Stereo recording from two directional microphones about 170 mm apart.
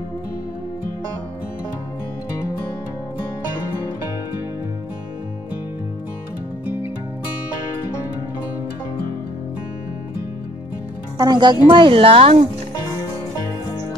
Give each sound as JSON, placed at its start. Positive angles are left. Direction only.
{"t": 11.1, "sound": "speech", "side_deg": -25}